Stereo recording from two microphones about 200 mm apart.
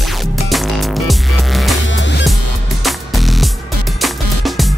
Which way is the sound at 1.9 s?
65° left (ahead or behind).